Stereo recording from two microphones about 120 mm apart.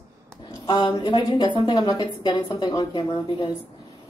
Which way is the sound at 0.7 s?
35° left (ahead or behind).